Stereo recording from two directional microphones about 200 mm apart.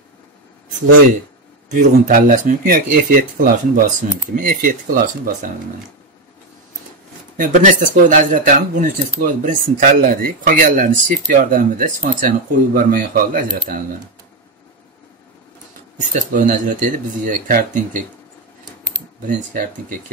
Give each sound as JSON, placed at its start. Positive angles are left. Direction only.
{"t": 1.7, "sound": "speech", "side_deg": -45}
{"t": 7.3, "sound": "speech", "side_deg": -40}
{"t": 16.1, "sound": "speech", "side_deg": -40}